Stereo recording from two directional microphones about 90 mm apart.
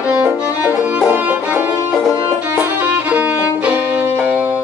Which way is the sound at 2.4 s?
20° right (ahead or behind).